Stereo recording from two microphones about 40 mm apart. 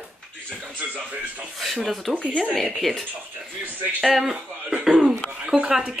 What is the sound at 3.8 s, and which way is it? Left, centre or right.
Speech, right.